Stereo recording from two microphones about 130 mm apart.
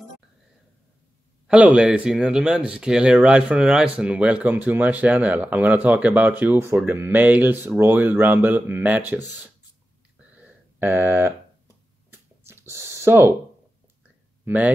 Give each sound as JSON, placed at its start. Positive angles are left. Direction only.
{"t": 1.5, "sound": "speech", "side_deg": -10}
{"t": 10.3, "sound": "a sound", "side_deg": -15}
{"t": 14.4, "sound": "speech", "side_deg": -10}